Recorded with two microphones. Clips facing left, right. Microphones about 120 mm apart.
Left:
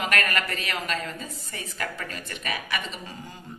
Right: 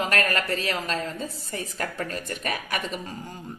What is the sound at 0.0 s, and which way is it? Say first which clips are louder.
A woman's voice: right 2 dB; 35° right (ahead or behind).